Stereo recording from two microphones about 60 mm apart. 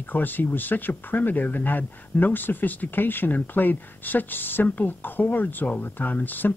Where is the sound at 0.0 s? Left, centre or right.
Left.